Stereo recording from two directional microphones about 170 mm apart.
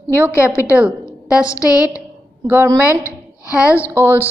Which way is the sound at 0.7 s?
5° right (ahead or behind).